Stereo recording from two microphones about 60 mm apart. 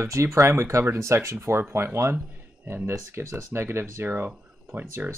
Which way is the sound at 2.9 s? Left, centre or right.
Right.